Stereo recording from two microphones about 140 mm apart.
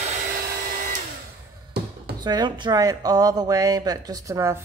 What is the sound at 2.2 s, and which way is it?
Speech, 25° right (ahead or behind).